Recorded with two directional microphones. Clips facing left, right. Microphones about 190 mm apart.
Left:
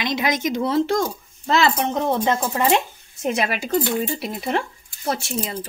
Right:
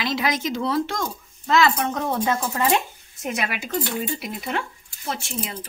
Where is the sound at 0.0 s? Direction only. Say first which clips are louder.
Left 2 dB; 20° left (ahead or behind); by 5.3 s 40° left (ahead or behind).